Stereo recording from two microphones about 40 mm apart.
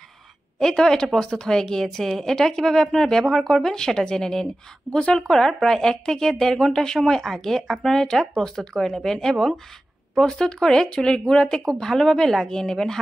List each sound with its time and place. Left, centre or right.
0.6 s a woman's voice: centre